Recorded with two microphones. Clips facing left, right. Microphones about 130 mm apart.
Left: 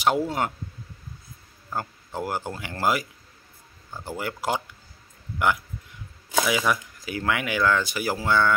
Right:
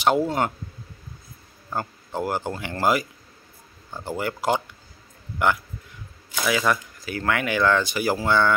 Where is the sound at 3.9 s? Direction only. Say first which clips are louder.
Right 4 dB; 20° right (ahead or behind).